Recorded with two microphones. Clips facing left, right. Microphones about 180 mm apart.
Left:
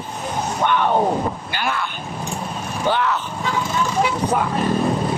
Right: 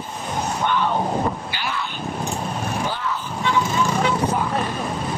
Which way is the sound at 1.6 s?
50° left (ahead or behind).